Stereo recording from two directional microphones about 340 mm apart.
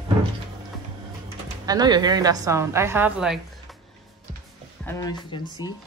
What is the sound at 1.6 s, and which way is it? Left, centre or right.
A woman's voice, centre.